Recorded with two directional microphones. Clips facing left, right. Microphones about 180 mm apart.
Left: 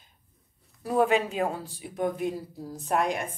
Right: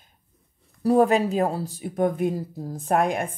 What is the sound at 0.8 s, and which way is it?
Speech, 40° right (ahead or behind).